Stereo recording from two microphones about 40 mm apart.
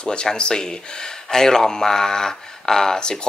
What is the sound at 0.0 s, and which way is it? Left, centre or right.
Speech, left.